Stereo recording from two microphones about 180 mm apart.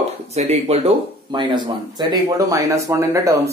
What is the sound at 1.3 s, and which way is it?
Speech, 25° right (ahead or behind).